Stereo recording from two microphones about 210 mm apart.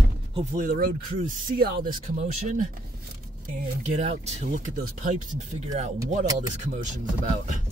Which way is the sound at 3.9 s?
30° right (ahead or behind).